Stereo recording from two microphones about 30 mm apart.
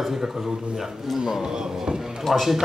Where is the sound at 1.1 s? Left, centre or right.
Right.